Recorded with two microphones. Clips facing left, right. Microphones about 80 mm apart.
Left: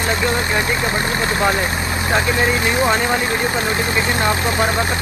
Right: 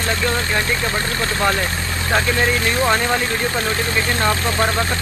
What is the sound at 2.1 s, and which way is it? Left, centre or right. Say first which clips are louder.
Speech: even; centre.